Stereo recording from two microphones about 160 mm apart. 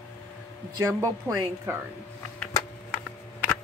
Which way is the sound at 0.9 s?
20° right (ahead or behind).